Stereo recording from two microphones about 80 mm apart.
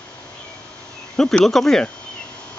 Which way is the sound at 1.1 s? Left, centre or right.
Centre.